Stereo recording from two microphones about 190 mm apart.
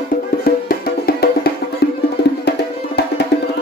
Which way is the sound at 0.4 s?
55° left (ahead or behind).